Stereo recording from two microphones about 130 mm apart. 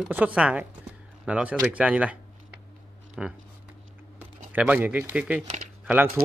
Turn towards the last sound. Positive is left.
turn(degrees=-10)  # may be behind; listen again after turning